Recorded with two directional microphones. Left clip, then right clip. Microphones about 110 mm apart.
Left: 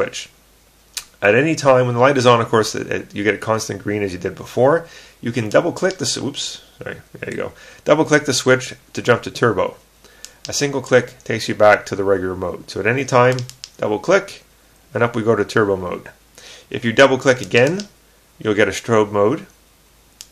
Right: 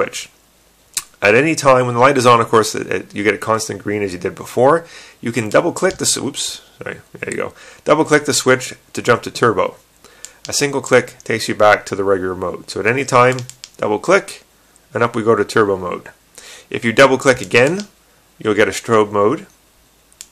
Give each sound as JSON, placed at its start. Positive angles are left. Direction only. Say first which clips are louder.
{"t": 0.0, "sound": "speech", "louder": "right 2 dB", "side_deg": -35}
{"t": 13.4, "sound": "speech", "louder": "even", "side_deg": 0}
{"t": 13.7, "sound": "speech", "louder": "right 2 dB", "side_deg": -35}